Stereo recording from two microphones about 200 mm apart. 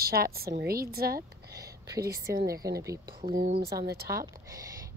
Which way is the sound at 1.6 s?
15° right (ahead or behind).